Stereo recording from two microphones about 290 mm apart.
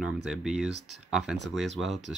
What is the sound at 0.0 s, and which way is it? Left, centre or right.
Speech, centre.